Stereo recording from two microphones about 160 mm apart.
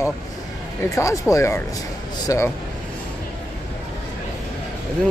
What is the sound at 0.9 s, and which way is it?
Speech, 20° left (ahead or behind).